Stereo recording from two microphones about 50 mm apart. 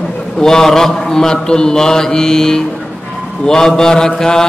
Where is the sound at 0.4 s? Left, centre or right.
Centre.